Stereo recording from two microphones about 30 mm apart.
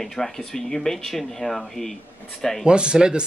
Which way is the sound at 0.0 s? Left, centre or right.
Centre.